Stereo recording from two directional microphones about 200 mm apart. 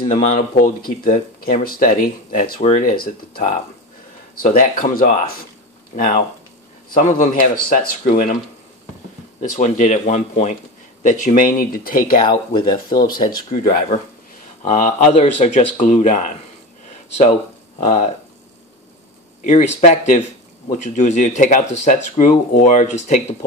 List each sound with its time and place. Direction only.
0.0 s a man's voice: 35° left (ahead or behind)
4.5 s a man's voice: 45° left (ahead or behind)
9.4 s a man's voice: 40° left (ahead or behind)
12.3 s speech: 20° left (ahead or behind)
13.0 s a man's voice: 45° left (ahead or behind)
19.4 s a man's voice: 35° left (ahead or behind)